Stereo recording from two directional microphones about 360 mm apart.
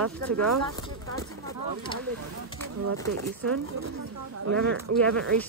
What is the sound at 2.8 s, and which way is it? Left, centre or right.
Speech, right.